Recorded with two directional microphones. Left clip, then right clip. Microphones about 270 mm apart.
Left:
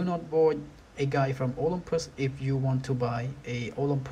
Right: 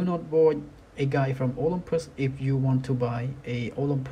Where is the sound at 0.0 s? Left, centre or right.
Centre.